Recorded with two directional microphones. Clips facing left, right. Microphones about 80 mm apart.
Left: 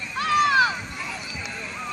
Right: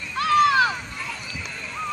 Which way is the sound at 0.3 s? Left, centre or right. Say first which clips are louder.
Right 2 dB; centre.